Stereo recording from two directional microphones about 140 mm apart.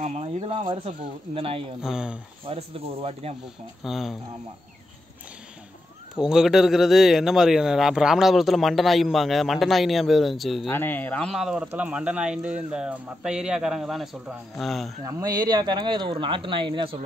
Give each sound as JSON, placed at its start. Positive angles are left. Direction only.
{"t": 0.0, "sound": "speech", "side_deg": -50}
{"t": 1.8, "sound": "speech", "side_deg": -5}
{"t": 2.4, "sound": "speech", "side_deg": -45}
{"t": 3.8, "sound": "speech", "side_deg": 0}
{"t": 6.1, "sound": "speech", "side_deg": -5}
{"t": 10.7, "sound": "speech", "side_deg": 15}
{"t": 15.0, "sound": "speech", "side_deg": -25}